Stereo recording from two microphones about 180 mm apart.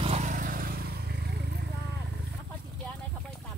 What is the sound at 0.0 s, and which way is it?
Vehicle, 40° right (ahead or behind).